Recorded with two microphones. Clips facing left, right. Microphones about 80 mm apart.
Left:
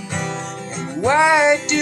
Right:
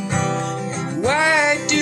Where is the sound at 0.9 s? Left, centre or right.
Centre.